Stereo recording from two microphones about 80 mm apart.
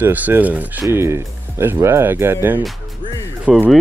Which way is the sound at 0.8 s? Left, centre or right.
Right.